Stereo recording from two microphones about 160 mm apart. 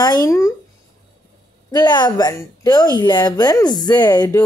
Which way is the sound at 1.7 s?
25° left (ahead or behind).